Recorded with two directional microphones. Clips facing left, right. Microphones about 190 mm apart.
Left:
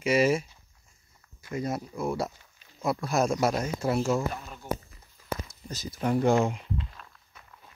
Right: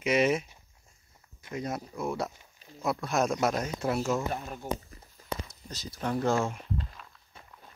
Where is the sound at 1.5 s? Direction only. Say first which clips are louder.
Left 3 dB; 5° left (ahead or behind).